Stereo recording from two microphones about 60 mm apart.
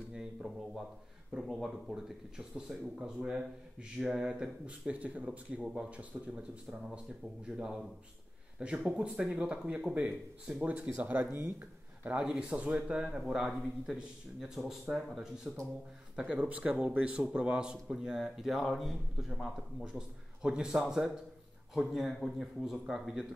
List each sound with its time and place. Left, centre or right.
0.1 s a man's voice: centre
5.6 s a man's voice: centre
5.9 s a man's voice: right
12.2 s a man's voice: centre
16.2 s a man's voice: centre